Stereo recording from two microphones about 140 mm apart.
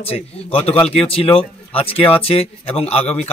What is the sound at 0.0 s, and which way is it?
A man's voice, 45° left (ahead or behind).